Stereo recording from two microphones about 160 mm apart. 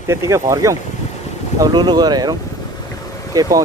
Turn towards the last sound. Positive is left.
turn(degrees=-25)  # may be behind; listen again after turning